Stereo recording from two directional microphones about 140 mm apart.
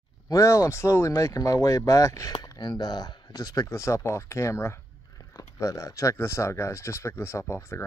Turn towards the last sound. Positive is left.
turn(degrees=20)  # may be behind; listen again after turning